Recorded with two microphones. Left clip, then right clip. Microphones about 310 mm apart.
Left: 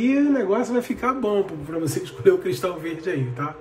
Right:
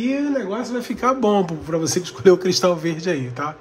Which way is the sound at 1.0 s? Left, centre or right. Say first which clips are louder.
Right 7 dB; centre.